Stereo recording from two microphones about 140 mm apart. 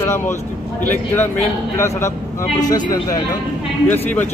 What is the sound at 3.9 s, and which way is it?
Speech, 15° left (ahead or behind).